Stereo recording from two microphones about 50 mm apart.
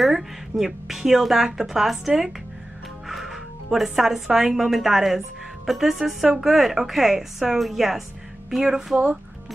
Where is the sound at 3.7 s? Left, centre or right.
Centre.